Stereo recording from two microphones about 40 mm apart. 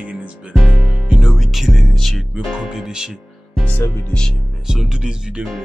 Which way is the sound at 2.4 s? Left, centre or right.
Centre.